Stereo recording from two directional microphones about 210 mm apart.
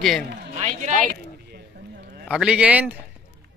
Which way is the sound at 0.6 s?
35° right (ahead or behind).